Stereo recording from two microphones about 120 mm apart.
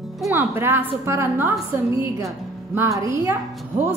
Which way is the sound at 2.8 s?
25° right (ahead or behind).